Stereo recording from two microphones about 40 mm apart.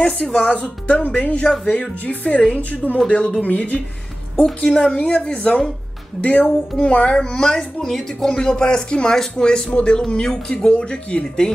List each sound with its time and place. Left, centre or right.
0.0 s speech: centre
0.4 s speech: left
2.7 s speech: left
3.1 s speech: left
4.9 s speech: left
6.2 s speech: left
7.1 s speech: centre